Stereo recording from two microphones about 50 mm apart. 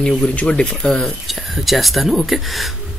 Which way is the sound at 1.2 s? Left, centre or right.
Centre.